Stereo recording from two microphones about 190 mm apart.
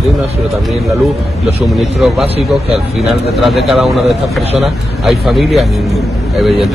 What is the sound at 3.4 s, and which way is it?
Speech, centre (ahead or behind).